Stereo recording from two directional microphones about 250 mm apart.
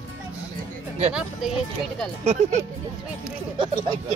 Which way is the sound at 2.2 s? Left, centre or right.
Right.